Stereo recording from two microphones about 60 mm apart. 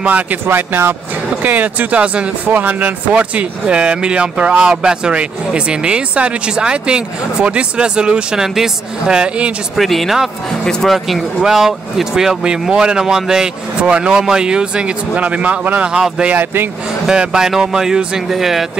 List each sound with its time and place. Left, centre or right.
0.0 s speech: right
0.5 s speech: right
1.4 s speech: right
9.8 s speech: centre
10.6 s speech: centre
10.9 s speech: centre